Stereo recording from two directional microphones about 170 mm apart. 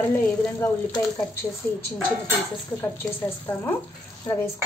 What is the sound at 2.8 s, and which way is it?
Speech, 15° left (ahead or behind).